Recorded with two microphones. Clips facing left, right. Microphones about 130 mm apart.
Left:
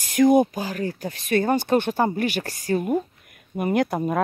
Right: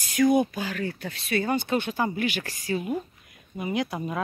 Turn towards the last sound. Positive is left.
turn(degrees=50)  # may be behind; listen again after turning